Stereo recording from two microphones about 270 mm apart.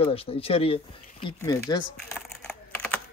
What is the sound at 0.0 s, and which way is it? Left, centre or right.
Speech, left.